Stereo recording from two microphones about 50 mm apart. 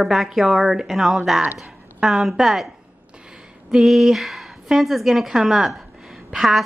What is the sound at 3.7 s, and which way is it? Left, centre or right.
A woman's voice, centre.